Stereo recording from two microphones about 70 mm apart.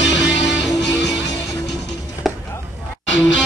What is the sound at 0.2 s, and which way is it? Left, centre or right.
Music, centre.